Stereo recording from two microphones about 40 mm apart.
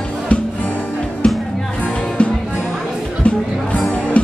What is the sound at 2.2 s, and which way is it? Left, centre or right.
Music, left.